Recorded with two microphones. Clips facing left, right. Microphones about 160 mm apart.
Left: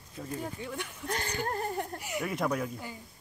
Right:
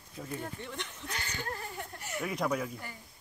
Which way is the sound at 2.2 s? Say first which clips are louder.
Left 1 dB; centre (ahead or behind).